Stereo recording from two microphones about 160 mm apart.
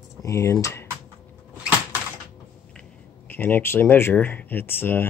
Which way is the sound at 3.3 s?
10° left (ahead or behind).